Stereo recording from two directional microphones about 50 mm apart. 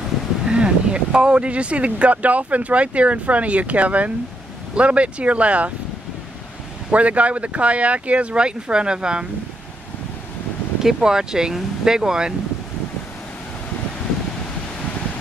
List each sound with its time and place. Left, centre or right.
0.5 s speech: centre
6.9 s speech: right
10.8 s speech: centre